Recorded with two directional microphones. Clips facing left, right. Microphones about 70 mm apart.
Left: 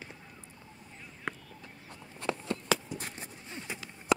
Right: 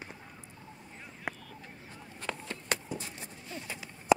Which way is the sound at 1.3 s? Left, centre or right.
Centre.